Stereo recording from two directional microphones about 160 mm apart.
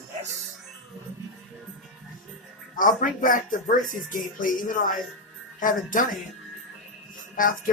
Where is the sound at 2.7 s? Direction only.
60° left (ahead or behind).